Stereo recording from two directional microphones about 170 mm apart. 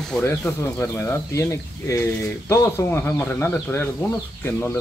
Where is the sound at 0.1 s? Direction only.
10° left (ahead or behind).